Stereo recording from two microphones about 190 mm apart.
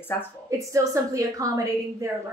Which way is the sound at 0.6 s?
15° right (ahead or behind).